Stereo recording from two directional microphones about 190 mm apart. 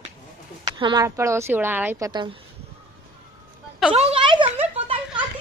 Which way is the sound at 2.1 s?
25° right (ahead or behind).